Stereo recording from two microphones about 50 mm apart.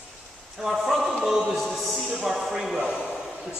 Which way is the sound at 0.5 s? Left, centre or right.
Centre.